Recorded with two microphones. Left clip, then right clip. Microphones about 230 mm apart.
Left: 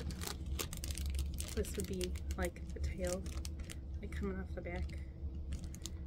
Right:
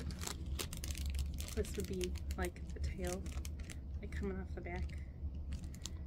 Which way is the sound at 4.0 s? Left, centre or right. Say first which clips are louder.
Left 1 dB; centre.